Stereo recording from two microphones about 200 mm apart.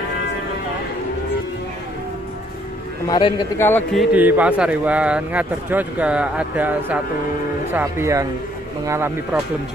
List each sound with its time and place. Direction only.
3.1 s a man's voice: 20° left (ahead or behind)
3.5 s speech: 10° left (ahead or behind)
4.0 s speech: 10° right (ahead or behind)